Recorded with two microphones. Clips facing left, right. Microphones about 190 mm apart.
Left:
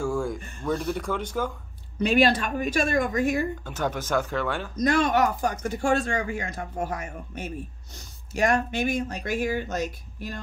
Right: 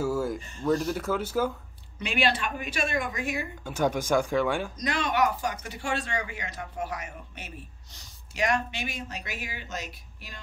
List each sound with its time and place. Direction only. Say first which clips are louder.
0.0 s a sound: even; 5° right (ahead or behind)
0.7 s speech: right 1 dB; 5° right (ahead or behind)
2.0 s speech: left 6 dB; 45° left (ahead or behind)
3.6 s speech: right 2 dB; 10° right (ahead or behind)
4.8 s speech: left 6 dB; 45° left (ahead or behind)